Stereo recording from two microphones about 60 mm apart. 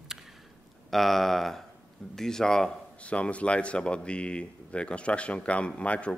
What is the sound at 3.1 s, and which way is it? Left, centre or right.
Speech, left.